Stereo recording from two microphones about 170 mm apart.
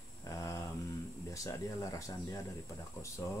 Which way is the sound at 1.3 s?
20° left (ahead or behind).